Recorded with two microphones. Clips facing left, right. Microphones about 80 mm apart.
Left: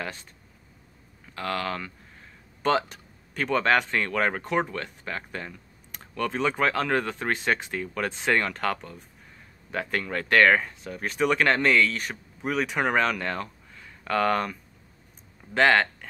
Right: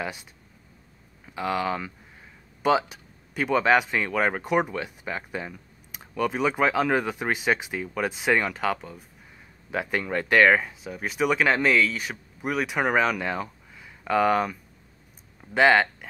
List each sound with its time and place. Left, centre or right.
0.0 s speech: centre